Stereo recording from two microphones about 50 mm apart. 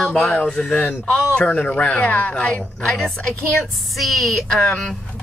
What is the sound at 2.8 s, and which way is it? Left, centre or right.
Speech, centre.